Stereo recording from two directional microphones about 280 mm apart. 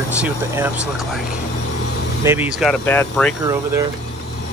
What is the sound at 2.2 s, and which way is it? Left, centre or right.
Speech, centre.